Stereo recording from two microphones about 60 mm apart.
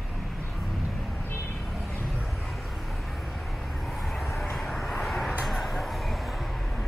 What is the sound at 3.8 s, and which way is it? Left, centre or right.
Vehicle, centre.